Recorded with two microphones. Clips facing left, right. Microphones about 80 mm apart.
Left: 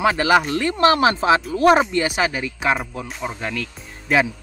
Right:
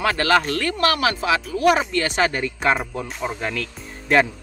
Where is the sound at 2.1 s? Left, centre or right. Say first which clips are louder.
Right 1 dB; centre.